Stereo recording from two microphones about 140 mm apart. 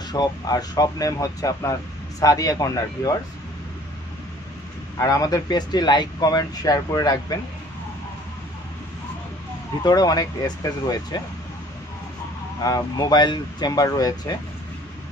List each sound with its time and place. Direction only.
0.1 s speech: 30° left (ahead or behind)
4.9 s speech: 25° left (ahead or behind)
9.8 s speech: 30° left (ahead or behind)
12.6 s speech: 25° left (ahead or behind)